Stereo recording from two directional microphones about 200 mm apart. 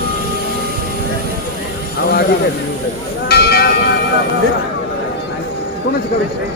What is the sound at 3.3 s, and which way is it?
Bell, 55° left (ahead or behind).